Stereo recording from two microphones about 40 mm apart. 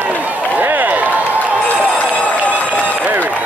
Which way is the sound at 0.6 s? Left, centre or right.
Right.